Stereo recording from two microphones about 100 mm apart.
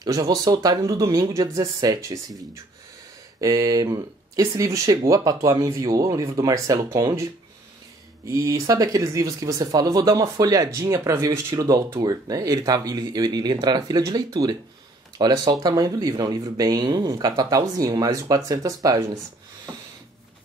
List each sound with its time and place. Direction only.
0.0 s speech: 40° right (ahead or behind)
3.3 s speech: 35° right (ahead or behind)
8.3 s speech: 35° right (ahead or behind)